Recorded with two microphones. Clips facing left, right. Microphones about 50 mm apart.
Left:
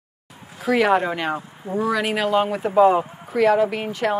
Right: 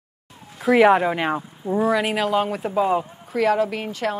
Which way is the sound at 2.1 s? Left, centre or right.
Centre.